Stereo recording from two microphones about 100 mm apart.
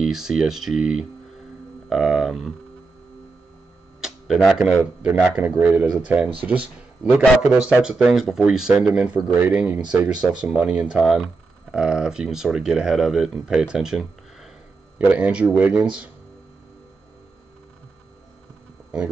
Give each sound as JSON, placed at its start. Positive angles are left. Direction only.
{"t": 0.0, "sound": "speech", "side_deg": -5}
{"t": 4.0, "sound": "tick-tock", "side_deg": -5}
{"t": 5.0, "sound": "speech", "side_deg": -15}
{"t": 15.0, "sound": "speech", "side_deg": -15}